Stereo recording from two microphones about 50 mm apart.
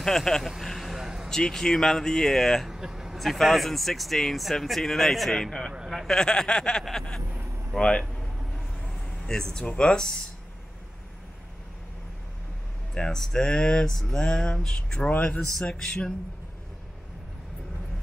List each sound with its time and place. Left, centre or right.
0.0 s speech: centre
0.6 s a sound: centre
1.3 s speech: centre
2.6 s vehicle: centre
3.2 s speech: centre
7.8 s speech: centre
8.8 s a sound: centre
9.8 s speech: centre
12.9 s speech: centre